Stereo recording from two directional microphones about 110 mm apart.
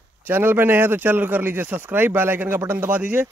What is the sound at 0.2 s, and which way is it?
Speech, 20° right (ahead or behind).